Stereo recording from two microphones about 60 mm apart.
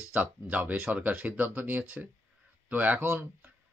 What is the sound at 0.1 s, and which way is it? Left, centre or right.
Speech, right.